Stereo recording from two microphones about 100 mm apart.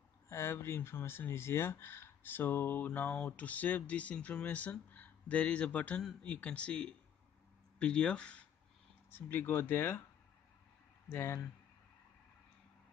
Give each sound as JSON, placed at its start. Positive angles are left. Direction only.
{"t": 0.3, "sound": "speech", "side_deg": 30}
{"t": 9.1, "sound": "speech", "side_deg": 20}
{"t": 11.1, "sound": "speech", "side_deg": 30}